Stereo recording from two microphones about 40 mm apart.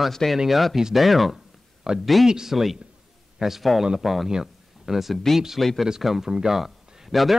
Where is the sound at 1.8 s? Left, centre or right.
Centre.